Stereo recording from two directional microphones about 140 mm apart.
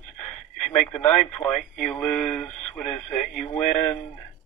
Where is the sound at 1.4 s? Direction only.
5° left (ahead or behind).